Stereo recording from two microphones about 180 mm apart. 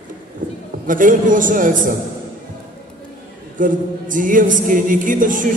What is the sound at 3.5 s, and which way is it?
Speech, 45° right (ahead or behind).